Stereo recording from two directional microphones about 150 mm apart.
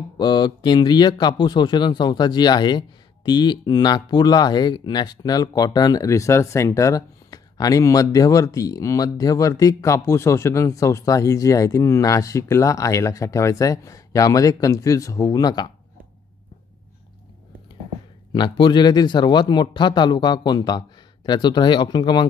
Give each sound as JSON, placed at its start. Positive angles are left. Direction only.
{"t": 0.2, "sound": "speech", "side_deg": 30}
{"t": 18.3, "sound": "speech", "side_deg": 30}